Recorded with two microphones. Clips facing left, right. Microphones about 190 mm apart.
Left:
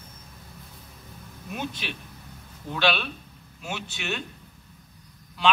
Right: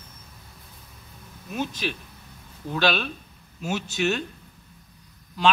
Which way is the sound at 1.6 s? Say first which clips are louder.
Right 5 dB; 40° right (ahead or behind).